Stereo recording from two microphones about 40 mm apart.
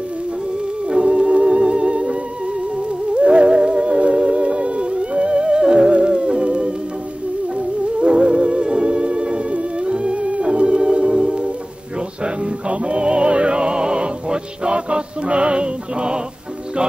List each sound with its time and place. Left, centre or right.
0.8 s music: right
3.2 s music: right